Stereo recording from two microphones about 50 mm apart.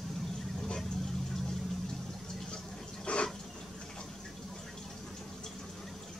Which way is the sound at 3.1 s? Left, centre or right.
Left.